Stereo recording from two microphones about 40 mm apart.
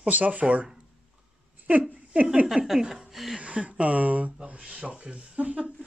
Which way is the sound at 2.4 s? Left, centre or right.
Centre.